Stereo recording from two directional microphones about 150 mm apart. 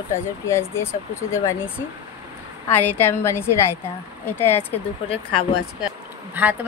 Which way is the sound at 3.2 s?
15° left (ahead or behind).